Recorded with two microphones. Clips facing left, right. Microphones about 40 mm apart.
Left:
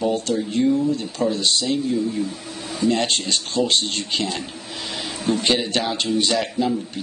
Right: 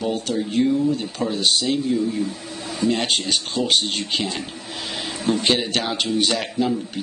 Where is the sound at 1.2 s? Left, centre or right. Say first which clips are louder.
Left 1 dB; right.